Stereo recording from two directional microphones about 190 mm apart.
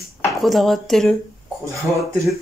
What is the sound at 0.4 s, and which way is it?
Speech, centre (ahead or behind).